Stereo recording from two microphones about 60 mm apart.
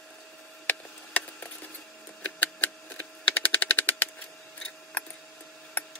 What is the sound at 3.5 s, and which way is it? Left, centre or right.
Machine gun, left.